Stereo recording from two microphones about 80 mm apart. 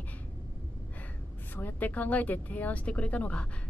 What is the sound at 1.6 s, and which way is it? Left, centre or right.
A woman's voice, left.